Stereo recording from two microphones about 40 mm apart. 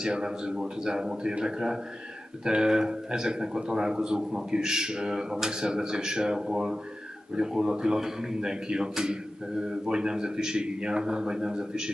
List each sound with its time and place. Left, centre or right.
0.0 s a man's voice: centre